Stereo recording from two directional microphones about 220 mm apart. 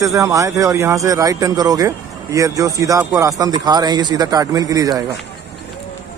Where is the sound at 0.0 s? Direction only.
15° right (ahead or behind).